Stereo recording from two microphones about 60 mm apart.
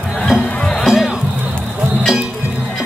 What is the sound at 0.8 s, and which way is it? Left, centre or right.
Music, centre.